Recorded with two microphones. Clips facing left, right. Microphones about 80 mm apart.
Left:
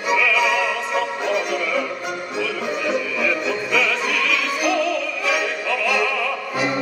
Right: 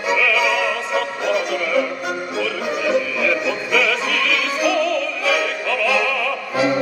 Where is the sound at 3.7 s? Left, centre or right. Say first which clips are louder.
Right 3 dB; right.